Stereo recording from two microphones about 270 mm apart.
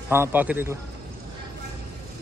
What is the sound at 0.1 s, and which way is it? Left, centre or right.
Speech, centre.